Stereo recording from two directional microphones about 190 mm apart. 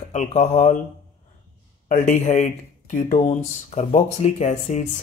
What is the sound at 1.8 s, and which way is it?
Speech, 45° left (ahead or behind).